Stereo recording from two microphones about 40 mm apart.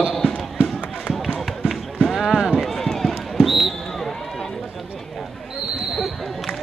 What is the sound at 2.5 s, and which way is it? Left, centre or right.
Run, centre.